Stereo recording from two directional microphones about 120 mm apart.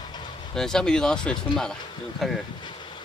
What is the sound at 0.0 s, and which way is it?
Vehicle, 35° left (ahead or behind).